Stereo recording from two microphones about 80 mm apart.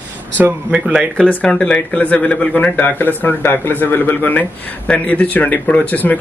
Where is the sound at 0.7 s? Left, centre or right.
Centre.